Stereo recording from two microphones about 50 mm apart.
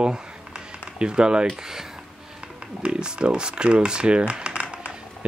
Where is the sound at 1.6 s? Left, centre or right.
Centre.